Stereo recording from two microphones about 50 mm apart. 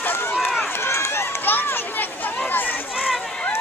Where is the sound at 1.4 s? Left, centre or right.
Left.